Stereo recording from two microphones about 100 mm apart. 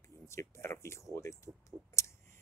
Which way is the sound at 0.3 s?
30° left (ahead or behind).